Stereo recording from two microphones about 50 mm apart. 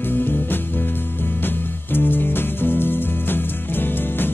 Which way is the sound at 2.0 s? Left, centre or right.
Left.